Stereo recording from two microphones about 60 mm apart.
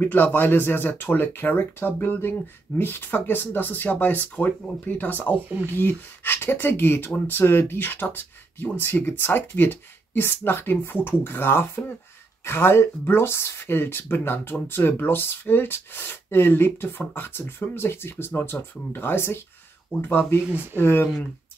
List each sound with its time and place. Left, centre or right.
0.0 s speech: left